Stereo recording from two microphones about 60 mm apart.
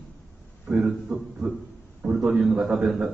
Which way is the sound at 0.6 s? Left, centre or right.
Right.